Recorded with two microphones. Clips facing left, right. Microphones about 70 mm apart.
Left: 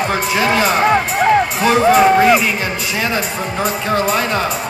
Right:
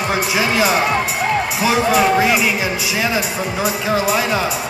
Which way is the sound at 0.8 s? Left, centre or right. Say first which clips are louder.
Left 5 dB; left.